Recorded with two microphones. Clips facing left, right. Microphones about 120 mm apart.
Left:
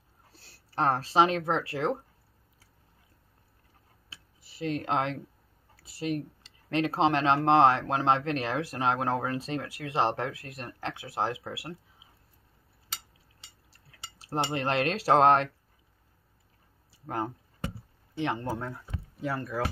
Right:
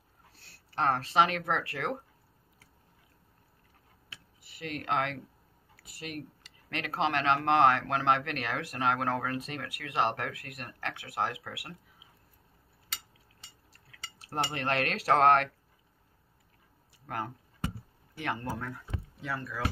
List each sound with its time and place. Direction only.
0.4 s speech: 35° left (ahead or behind)
4.1 s a sound: 30° left (ahead or behind)
5.8 s speech: 30° left (ahead or behind)
14.1 s cutlery: 30° left (ahead or behind)
17.0 s speech: 30° left (ahead or behind)
18.1 s cutlery: 25° left (ahead or behind)
19.2 s speech: 45° left (ahead or behind)